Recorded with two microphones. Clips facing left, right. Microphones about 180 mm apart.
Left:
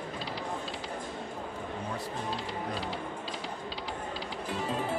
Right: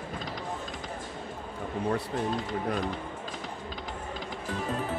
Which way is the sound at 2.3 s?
35° left (ahead or behind).